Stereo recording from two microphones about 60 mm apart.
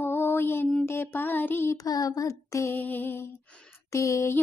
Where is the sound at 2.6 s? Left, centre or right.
Left.